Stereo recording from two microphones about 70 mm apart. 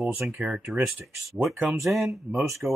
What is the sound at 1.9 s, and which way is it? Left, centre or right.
Speech, centre.